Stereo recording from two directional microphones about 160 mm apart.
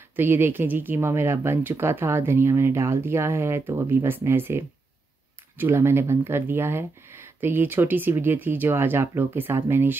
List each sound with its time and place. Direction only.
0.1 s speech: 15° right (ahead or behind)